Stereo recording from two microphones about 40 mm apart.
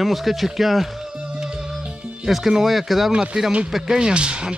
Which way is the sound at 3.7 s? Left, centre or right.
Centre.